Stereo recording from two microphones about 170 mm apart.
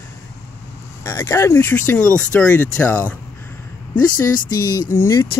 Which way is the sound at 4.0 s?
20° left (ahead or behind).